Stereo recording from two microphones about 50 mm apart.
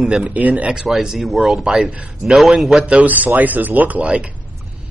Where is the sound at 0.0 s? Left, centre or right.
Centre.